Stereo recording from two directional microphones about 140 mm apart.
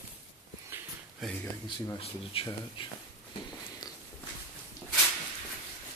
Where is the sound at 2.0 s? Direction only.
40° left (ahead or behind).